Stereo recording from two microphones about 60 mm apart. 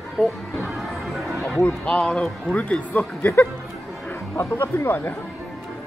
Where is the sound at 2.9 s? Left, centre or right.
Left.